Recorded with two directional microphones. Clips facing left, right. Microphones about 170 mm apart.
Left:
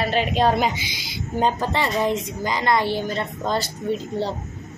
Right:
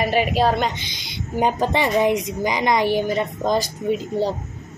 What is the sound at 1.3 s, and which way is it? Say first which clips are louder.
A woman's voice: right 2 dB; 15° right (ahead or behind).